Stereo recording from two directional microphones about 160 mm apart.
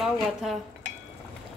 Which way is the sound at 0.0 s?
Centre (ahead or behind).